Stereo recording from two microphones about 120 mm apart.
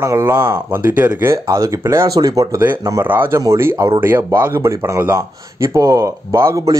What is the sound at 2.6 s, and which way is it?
Speech, 20° right (ahead or behind).